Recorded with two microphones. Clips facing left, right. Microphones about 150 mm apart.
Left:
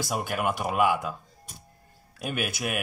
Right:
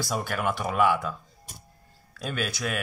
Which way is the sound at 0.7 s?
15° left (ahead or behind).